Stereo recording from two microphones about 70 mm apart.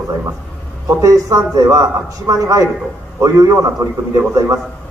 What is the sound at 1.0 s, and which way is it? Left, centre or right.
A man's voice, right.